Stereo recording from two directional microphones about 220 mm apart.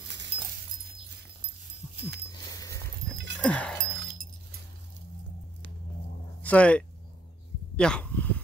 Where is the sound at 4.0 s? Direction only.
50° right (ahead or behind).